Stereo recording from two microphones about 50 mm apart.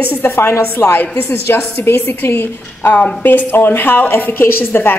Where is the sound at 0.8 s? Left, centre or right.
Left.